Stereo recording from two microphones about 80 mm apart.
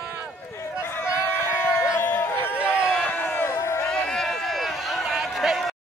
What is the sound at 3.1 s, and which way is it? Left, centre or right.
Crowd, left.